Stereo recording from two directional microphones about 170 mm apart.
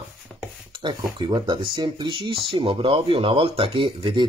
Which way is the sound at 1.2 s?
25° right (ahead or behind).